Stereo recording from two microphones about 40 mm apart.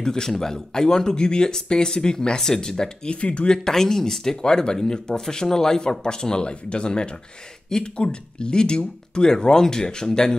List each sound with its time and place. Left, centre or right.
0.0 s speech: centre
3.2 s speech: left
3.5 s speech: centre